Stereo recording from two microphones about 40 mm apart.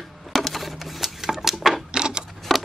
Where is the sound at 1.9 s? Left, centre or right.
Right.